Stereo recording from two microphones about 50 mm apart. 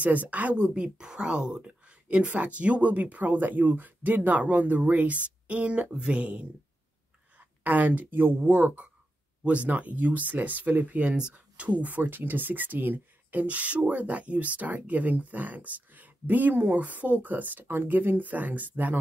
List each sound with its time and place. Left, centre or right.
0.0 s speech: right
0.7 s speech: centre
7.3 s speech: right